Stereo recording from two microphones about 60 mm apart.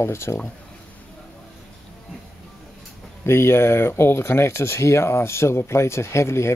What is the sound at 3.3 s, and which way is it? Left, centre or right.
Speech, left.